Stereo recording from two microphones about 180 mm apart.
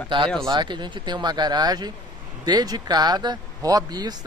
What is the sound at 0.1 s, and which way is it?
Speech, 25° right (ahead or behind).